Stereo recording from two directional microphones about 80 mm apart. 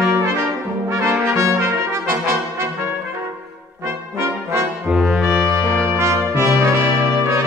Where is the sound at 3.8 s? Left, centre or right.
Right.